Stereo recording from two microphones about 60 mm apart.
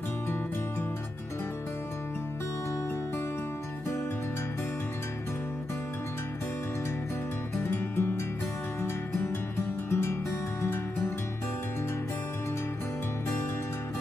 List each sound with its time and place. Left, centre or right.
7.6 s music: left
9.8 s music: left